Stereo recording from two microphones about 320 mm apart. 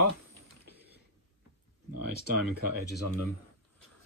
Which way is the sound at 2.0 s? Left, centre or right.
Right.